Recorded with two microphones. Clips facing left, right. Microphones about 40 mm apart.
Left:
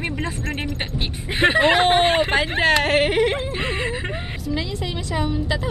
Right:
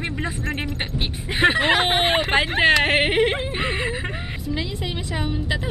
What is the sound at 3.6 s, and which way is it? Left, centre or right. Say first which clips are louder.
Speech: even; centre.